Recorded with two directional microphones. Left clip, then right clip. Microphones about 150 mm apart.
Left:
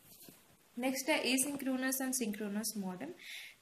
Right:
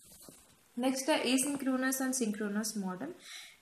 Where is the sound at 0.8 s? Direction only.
15° left (ahead or behind).